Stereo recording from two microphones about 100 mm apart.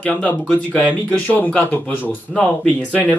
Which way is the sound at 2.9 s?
15° left (ahead or behind).